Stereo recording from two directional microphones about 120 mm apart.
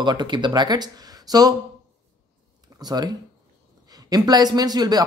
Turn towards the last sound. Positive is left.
turn(degrees=-35)  # may be behind; listen again after turning